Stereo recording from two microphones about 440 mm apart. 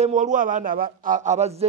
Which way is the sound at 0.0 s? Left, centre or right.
Centre.